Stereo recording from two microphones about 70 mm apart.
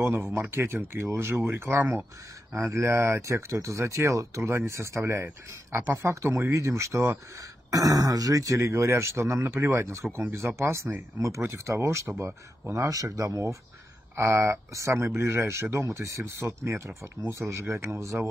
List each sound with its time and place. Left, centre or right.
0.0 s speech: right
1.8 s speech: right
2.7 s speech: right
7.7 s speech: right
12.2 s speech: right
12.8 s speech: right